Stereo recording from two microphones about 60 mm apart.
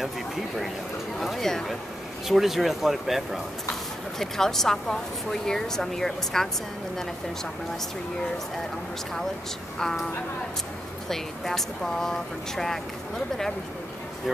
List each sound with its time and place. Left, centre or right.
1.2 s speech: centre
2.2 s a woman's voice: centre
9.8 s a woman's voice: centre
11.1 s a woman's voice: centre